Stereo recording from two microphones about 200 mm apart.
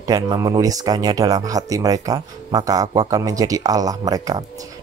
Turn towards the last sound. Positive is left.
turn(degrees=-20)  # may be behind; listen again after turning